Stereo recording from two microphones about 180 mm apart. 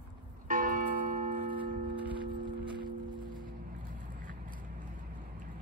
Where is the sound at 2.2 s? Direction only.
25° right (ahead or behind).